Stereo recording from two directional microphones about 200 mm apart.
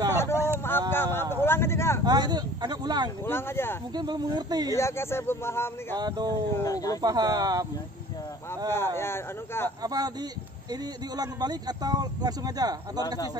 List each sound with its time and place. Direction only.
0.1 s a sound: 10° left (ahead or behind)
2.0 s speech: 20° right (ahead or behind)
3.3 s speech: 10° left (ahead or behind)
3.9 s speech: 20° right (ahead or behind)
4.7 s speech: 15° left (ahead or behind)
5.9 s speech: 20° right (ahead or behind)
6.5 s speech: 15° left (ahead or behind)
7.0 s speech: 20° right (ahead or behind)
8.6 s speech: 10° left (ahead or behind)
9.8 s speech: 20° right (ahead or behind)